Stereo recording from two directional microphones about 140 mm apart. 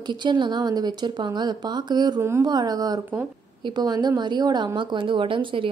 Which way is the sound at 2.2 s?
20° right (ahead or behind).